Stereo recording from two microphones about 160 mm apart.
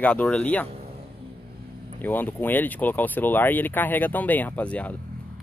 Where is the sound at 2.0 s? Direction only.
10° left (ahead or behind).